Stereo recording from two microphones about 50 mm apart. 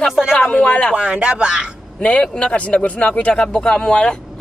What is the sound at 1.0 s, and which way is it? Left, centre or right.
Speech, right.